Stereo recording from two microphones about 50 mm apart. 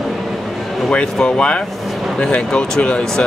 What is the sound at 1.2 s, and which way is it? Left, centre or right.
Speech, centre.